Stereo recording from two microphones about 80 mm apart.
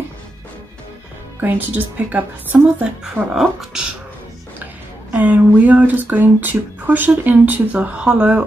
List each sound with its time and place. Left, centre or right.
1.4 s speech: right
3.0 s speech: centre
5.1 s speech: centre